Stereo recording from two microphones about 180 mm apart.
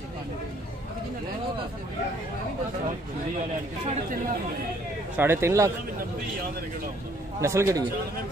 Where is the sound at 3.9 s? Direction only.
45° right (ahead or behind).